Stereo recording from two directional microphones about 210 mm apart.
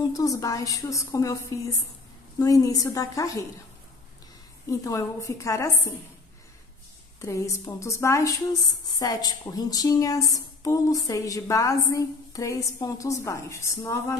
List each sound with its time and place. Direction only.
0.1 s speech: 15° left (ahead or behind)
4.6 s speech: 15° left (ahead or behind)
7.2 s speech: 15° left (ahead or behind)